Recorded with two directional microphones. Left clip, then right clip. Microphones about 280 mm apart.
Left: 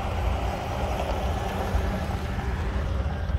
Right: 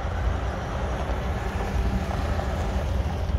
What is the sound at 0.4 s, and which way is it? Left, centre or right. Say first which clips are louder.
Vehicle: left 1 dB; left.